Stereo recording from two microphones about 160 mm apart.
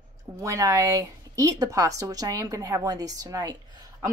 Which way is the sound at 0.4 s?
20° right (ahead or behind).